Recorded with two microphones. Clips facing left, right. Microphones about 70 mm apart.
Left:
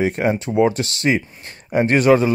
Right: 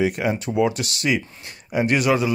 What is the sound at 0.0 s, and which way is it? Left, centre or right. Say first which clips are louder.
Speech: left 3 dB; left.